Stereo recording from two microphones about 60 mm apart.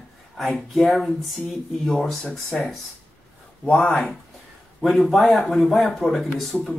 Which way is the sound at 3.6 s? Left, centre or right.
Centre.